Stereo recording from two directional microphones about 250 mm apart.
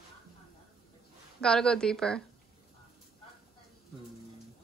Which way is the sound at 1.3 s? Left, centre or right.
Centre.